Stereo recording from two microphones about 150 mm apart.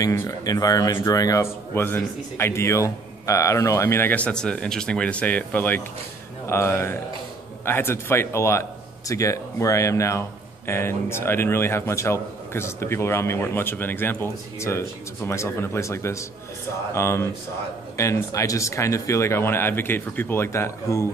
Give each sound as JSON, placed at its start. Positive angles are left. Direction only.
{"t": 0.0, "sound": "a man's voice", "side_deg": 20}